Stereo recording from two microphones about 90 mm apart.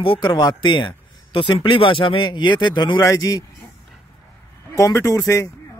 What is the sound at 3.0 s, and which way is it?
Speech, 40° left (ahead or behind).